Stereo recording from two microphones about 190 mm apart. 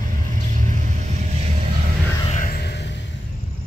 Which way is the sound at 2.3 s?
45° left (ahead or behind).